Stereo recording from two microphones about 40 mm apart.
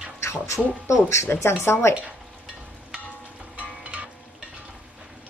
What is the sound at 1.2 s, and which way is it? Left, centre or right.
Speech, left.